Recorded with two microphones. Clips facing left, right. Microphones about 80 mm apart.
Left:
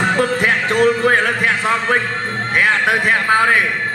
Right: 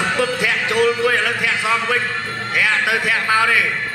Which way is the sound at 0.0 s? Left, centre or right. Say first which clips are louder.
Left 3 dB; left.